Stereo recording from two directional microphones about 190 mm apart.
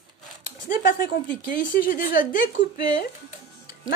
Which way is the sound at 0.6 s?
45° left (ahead or behind).